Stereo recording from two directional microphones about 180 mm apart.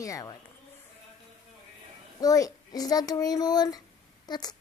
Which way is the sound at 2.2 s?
20° left (ahead or behind).